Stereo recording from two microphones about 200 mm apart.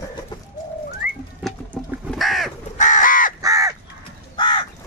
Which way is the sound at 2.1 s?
Centre (ahead or behind).